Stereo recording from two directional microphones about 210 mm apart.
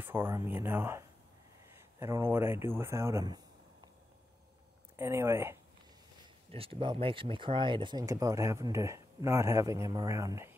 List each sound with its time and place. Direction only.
0.0 s speech: 10° right (ahead or behind)
4.9 s speech: 10° right (ahead or behind)
6.5 s speech: 25° right (ahead or behind)